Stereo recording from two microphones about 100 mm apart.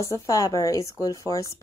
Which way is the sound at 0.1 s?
35° left (ahead or behind).